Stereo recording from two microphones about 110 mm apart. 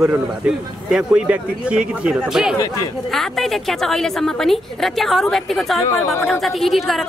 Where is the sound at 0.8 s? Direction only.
10° right (ahead or behind).